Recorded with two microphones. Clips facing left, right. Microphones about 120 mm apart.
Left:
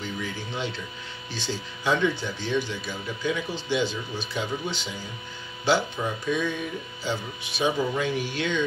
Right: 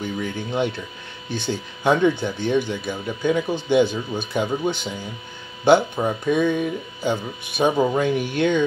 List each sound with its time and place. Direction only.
0.0 s speech: 55° right (ahead or behind)